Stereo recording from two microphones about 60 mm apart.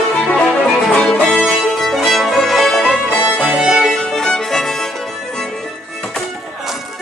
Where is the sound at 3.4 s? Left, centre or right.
Centre.